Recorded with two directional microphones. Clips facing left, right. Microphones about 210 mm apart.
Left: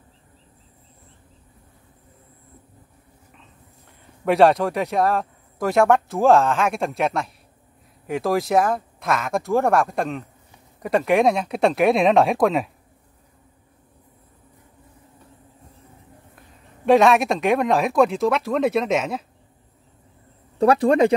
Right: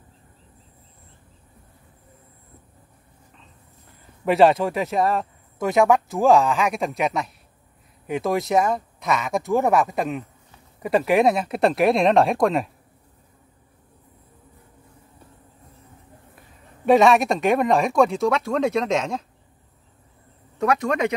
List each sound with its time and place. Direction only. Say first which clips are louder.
4.2 s speech: even; centre (ahead or behind)
16.8 s speech: even; centre (ahead or behind)
20.5 s speech: left 6 dB; 30° left (ahead or behind)